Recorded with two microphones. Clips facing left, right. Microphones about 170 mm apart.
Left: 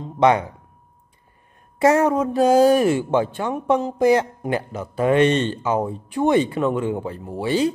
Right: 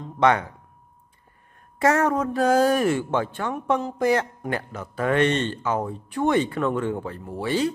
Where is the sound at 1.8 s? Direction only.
10° left (ahead or behind).